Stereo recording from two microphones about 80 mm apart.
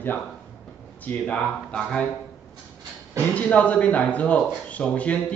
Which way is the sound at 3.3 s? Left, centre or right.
Centre.